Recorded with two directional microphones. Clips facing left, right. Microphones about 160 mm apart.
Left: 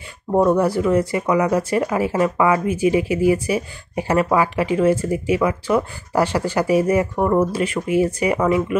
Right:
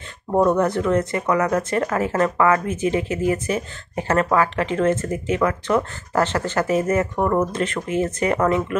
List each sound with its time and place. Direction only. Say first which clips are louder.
0.3 s speech: left 2 dB; 5° left (ahead or behind)